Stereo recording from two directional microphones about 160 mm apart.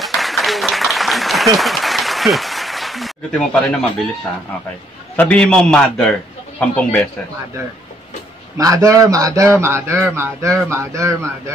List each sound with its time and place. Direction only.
0.0 s applause: centre (ahead or behind)
5.1 s a man's voice: 10° left (ahead or behind)
8.5 s a man's voice: 20° right (ahead or behind)